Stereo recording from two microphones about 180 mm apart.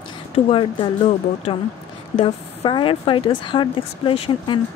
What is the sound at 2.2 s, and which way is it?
Speech, 25° left (ahead or behind).